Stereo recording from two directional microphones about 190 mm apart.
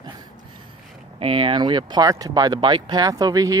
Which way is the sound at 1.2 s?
30° right (ahead or behind).